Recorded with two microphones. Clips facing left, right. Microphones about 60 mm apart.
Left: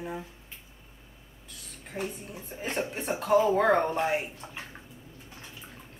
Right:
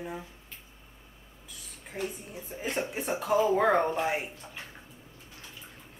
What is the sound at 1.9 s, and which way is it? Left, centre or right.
Speech, centre.